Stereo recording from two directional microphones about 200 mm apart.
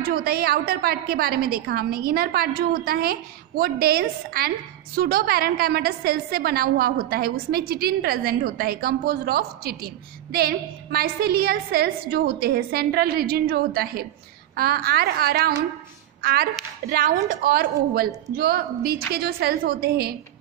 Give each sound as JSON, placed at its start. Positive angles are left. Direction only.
{"t": 0.0, "sound": "a woman's voice", "side_deg": -50}
{"t": 16.2, "sound": "a sound", "side_deg": -50}
{"t": 16.9, "sound": "a woman's voice", "side_deg": -45}